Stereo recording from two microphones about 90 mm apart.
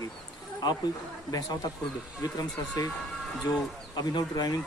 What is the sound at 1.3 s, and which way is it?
Speech, 45° left (ahead or behind).